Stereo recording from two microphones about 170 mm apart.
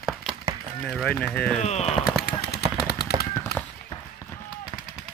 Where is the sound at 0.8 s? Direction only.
Centre (ahead or behind).